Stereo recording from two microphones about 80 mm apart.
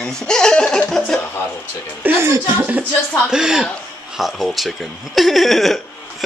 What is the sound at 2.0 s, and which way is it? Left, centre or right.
Speech, right.